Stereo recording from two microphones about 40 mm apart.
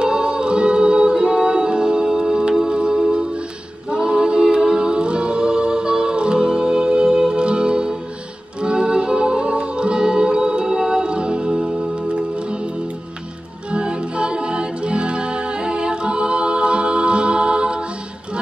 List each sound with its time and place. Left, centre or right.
0.0 s music: right
2.1 s organ: centre
2.7 s music: right
3.9 s a capella: right
8.5 s music: right
13.7 s music: right